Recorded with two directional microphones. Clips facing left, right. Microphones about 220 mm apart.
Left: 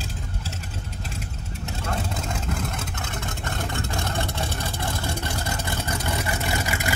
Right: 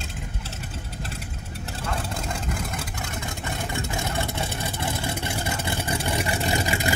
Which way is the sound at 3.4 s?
15° right (ahead or behind).